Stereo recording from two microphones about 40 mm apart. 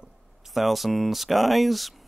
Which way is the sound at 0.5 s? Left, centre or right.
Centre.